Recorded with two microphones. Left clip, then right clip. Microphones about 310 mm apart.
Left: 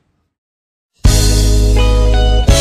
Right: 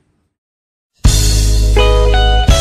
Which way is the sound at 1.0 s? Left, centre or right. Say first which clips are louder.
Left 1 dB; centre.